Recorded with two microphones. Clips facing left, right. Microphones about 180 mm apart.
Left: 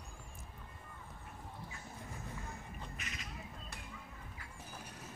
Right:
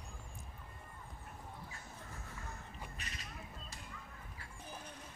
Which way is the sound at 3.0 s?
35° right (ahead or behind).